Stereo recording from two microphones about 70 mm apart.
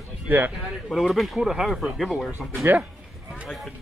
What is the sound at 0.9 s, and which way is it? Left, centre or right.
Speech, centre.